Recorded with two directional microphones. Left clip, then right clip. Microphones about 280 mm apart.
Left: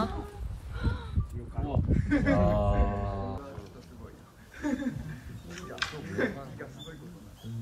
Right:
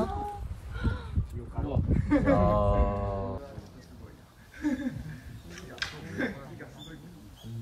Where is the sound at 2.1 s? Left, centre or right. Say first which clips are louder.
Right 2 dB; right.